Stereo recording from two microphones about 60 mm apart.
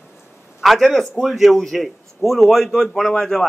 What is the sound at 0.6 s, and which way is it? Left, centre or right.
A man's voice, centre.